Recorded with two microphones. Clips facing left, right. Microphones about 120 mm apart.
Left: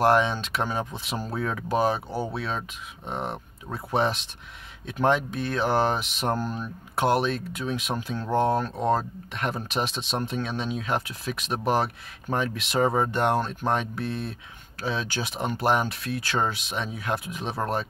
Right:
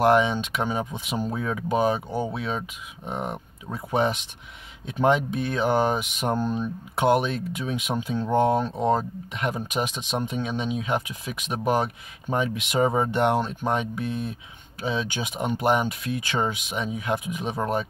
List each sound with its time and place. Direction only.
0.0 s speech: 15° right (ahead or behind)
4.8 s speech: 20° right (ahead or behind)